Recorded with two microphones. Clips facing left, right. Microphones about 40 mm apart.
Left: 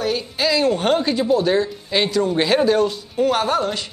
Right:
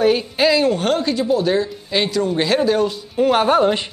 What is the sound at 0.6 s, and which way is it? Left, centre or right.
Speech, centre.